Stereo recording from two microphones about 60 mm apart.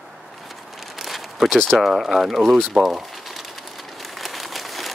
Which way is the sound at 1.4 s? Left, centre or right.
Centre.